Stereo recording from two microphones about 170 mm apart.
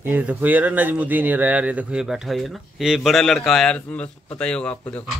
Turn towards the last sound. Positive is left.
turn(degrees=5)  # may be behind; listen again after turning